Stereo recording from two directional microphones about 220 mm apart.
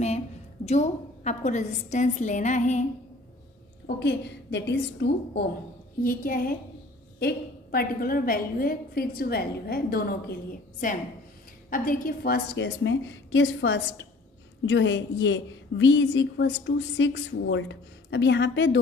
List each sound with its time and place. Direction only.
0.7 s a woman's voice: 30° left (ahead or behind)
3.8 s a woman's voice: 50° left (ahead or behind)
6.0 s a woman's voice: 40° left (ahead or behind)